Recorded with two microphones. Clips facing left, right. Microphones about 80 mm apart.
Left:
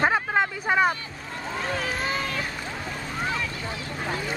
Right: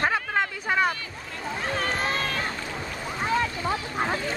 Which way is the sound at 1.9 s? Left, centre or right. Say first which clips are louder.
Right 1 dB; centre.